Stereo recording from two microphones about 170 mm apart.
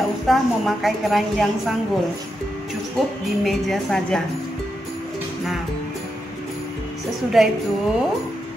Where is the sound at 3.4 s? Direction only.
Centre (ahead or behind).